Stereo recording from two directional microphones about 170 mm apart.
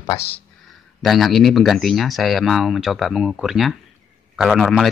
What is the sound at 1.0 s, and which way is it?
Speech, centre (ahead or behind).